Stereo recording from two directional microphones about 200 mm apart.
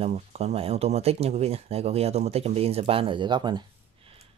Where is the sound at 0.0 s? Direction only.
30° right (ahead or behind).